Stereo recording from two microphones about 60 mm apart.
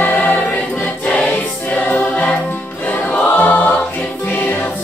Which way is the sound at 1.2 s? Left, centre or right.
Left.